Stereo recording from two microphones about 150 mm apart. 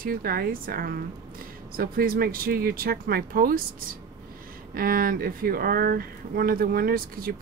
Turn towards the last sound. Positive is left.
turn(degrees=-75)  # may be behind; listen again after turning